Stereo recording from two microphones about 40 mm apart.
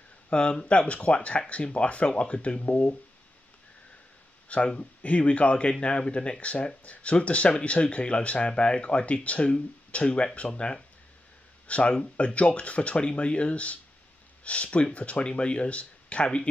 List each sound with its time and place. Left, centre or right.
0.3 s speech: left
4.5 s speech: left
11.6 s a sound: left
12.4 s speech: left